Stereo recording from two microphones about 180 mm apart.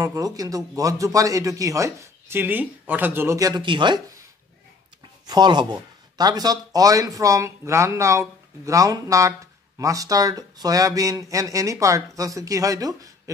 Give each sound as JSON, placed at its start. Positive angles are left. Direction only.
{"t": 0.0, "sound": "speech", "side_deg": -20}
{"t": 5.2, "sound": "speech", "side_deg": -25}